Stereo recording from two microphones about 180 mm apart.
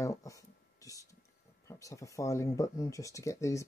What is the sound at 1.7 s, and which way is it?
Speech, 20° left (ahead or behind).